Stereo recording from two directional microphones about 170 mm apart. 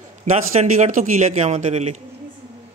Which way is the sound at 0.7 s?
45° right (ahead or behind).